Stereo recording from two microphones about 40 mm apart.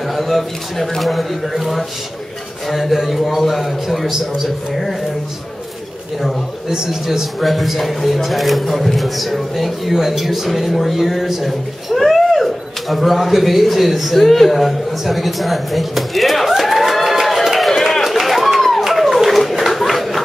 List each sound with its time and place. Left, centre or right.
0.1 s speech: centre
6.7 s a man's voice: centre
7.1 s speech: centre
18.2 s a sound: centre